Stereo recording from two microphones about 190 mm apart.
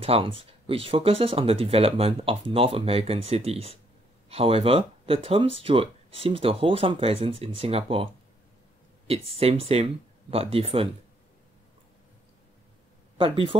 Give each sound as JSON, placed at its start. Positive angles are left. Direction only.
{"t": 0.0, "sound": "speech", "side_deg": -30}
{"t": 13.2, "sound": "speech", "side_deg": -25}